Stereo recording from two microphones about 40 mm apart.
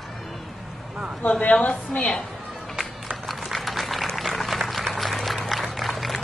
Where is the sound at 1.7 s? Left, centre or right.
Left.